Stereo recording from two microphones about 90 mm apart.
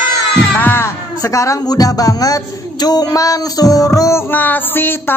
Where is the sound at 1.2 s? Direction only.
35° left (ahead or behind).